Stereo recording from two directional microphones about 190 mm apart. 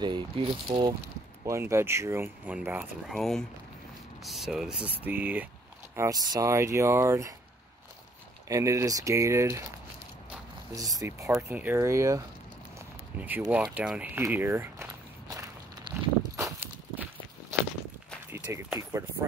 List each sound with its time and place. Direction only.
0.0 s speech: 25° right (ahead or behind)
1.4 s speech: 15° right (ahead or behind)
8.5 s speech: 15° right (ahead or behind)
10.7 s speech: 20° right (ahead or behind)
12.7 s a sound: 10° right (ahead or behind)
16.2 s walk: 15° right (ahead or behind)
18.5 s speech: 10° right (ahead or behind)